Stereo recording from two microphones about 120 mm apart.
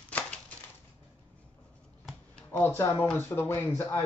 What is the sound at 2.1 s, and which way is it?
Speech, 10° left (ahead or behind).